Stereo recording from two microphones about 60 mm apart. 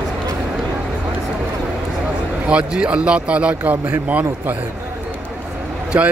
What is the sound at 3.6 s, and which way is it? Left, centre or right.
A man's voice, right.